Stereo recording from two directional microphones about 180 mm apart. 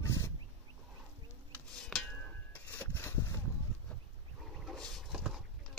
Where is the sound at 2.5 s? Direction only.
10° left (ahead or behind).